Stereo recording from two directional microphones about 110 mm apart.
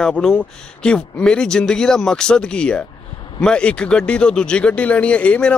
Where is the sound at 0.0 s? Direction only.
5° left (ahead or behind).